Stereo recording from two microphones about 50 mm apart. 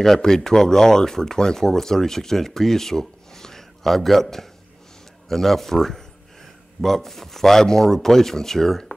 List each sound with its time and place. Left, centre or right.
0.0 s speech: centre